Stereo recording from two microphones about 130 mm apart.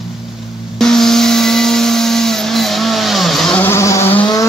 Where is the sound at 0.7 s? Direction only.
5° left (ahead or behind).